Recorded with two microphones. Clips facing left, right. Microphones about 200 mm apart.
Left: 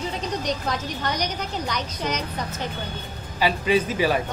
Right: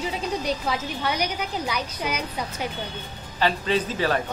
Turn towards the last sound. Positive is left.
turn(degrees=10)  # may be behind; listen again after turning